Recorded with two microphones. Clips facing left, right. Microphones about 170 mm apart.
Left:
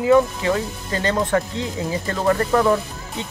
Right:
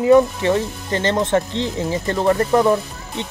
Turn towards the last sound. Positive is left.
turn(degrees=-20)  # may be behind; listen again after turning